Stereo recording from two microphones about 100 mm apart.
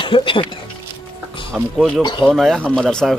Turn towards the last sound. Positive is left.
turn(degrees=5)  # may be behind; listen again after turning